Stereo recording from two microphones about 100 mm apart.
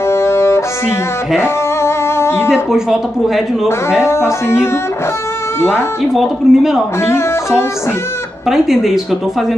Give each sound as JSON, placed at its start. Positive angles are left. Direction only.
{"t": 0.1, "sound": "music", "side_deg": 25}
{"t": 2.7, "sound": "speech", "side_deg": -5}
{"t": 4.0, "sound": "speech", "side_deg": 25}
{"t": 6.1, "sound": "speech", "side_deg": 0}
{"t": 7.0, "sound": "speech", "side_deg": 25}
{"t": 8.5, "sound": "speech", "side_deg": -5}